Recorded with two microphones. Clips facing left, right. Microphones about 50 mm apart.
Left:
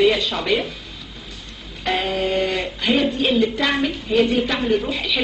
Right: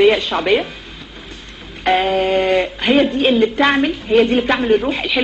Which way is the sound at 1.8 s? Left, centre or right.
Right.